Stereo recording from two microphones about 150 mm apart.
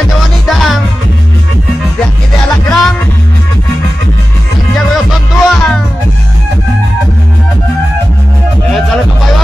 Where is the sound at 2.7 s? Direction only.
Centre (ahead or behind).